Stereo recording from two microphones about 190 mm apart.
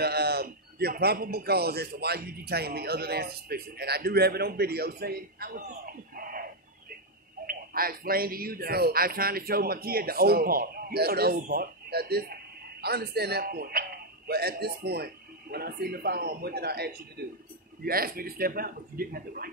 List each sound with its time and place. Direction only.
0.0 s a man's voice: 55° right (ahead or behind)